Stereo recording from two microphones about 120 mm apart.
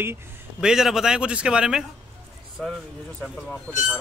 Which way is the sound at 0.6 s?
5° right (ahead or behind).